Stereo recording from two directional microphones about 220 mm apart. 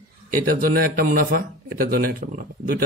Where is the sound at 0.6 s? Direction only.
40° right (ahead or behind).